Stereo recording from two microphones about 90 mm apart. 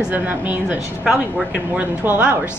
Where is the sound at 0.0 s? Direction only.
20° right (ahead or behind).